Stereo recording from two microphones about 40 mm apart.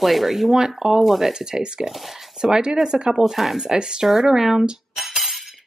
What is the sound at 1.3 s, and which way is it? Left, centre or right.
Speech, centre.